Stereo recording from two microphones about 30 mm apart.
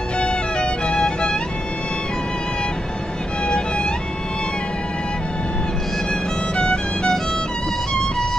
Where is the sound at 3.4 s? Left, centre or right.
Left.